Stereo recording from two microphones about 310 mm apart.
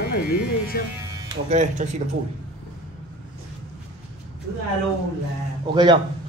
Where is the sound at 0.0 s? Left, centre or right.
Left.